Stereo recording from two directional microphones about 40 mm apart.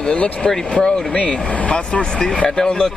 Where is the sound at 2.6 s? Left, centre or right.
Centre.